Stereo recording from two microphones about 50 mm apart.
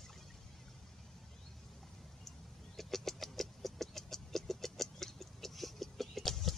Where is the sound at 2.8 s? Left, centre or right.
Centre.